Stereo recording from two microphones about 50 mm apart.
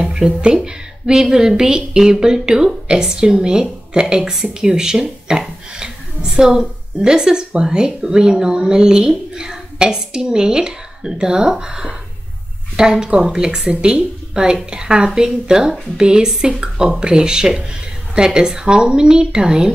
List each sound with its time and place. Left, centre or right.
0.0 s a woman's voice: centre